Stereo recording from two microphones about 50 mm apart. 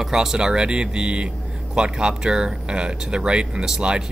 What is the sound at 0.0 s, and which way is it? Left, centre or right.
Speech, centre.